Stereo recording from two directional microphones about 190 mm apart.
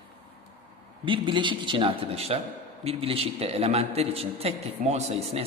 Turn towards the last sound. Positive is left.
turn(degrees=-35)  # may be behind; listen again after turning